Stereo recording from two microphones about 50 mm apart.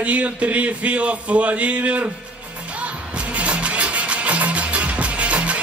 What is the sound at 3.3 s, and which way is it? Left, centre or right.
Music, right.